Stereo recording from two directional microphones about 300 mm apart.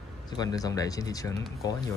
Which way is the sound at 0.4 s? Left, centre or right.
Centre.